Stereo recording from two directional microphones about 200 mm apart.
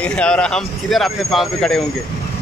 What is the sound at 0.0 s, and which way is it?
Speech, 5° left (ahead or behind).